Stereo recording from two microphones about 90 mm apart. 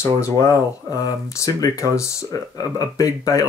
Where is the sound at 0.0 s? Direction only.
30° left (ahead or behind).